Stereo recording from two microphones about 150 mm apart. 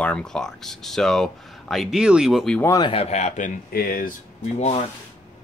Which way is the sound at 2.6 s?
20° left (ahead or behind).